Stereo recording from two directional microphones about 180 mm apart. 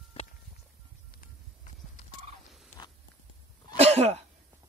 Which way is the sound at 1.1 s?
45° left (ahead or behind).